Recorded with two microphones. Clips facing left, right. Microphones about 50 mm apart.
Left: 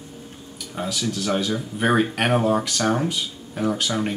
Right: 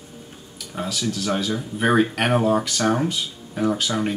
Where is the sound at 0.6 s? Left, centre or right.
Centre.